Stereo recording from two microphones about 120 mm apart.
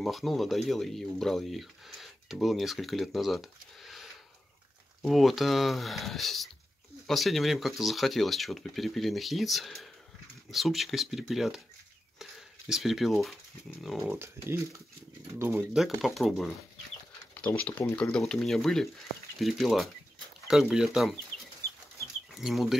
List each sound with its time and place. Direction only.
0.0 s speech: centre (ahead or behind)
14.1 s speech: 20° right (ahead or behind)
16.0 s speech: centre (ahead or behind)
17.6 s speech: 10° left (ahead or behind)
22.3 s speech: centre (ahead or behind)